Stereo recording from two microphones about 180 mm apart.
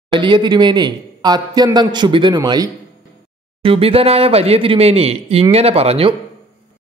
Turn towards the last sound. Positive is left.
turn(degrees=-35)  # may be behind; listen again after turning